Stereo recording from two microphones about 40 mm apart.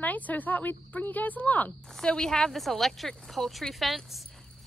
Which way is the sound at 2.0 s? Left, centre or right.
Left.